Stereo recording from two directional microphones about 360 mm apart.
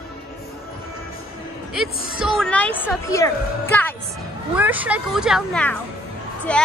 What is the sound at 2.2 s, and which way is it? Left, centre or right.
Speech, centre.